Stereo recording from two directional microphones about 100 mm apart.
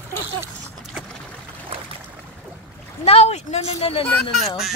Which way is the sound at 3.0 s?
90° left.